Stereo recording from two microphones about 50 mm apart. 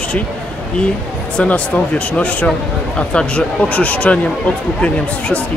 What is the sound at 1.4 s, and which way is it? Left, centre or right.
Speech, left.